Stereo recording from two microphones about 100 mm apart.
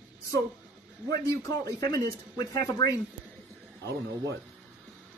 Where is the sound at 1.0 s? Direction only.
35° left (ahead or behind).